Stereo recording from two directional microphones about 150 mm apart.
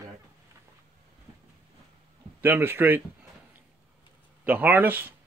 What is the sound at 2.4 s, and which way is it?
Speech, 15° right (ahead or behind).